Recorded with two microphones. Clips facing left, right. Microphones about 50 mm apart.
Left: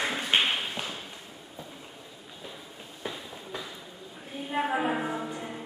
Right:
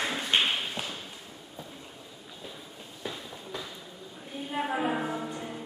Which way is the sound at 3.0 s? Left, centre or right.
Centre.